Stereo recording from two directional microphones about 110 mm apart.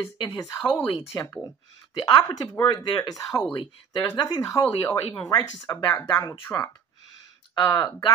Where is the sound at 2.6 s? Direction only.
40° left (ahead or behind).